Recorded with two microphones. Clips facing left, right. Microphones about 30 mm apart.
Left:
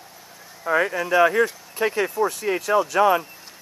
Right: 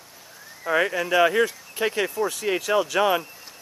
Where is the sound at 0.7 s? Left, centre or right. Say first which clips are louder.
Left 1 dB; centre.